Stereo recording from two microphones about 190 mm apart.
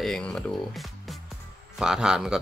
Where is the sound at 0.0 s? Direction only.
5° left (ahead or behind).